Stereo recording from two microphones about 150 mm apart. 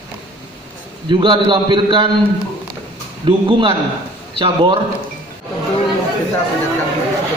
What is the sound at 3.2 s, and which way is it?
A man's voice, 35° right (ahead or behind).